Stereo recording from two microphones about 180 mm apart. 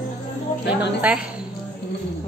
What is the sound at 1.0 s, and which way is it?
Speech, 5° right (ahead or behind).